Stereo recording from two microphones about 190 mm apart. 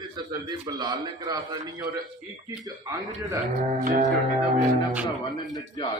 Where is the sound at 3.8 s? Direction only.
40° right (ahead or behind).